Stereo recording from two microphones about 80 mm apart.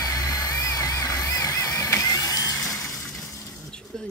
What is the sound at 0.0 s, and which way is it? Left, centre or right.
Music, left.